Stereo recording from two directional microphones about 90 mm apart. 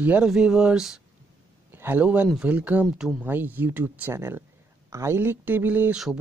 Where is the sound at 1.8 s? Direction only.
25° right (ahead or behind).